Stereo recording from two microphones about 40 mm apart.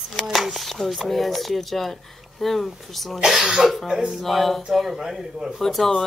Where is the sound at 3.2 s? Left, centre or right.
Centre.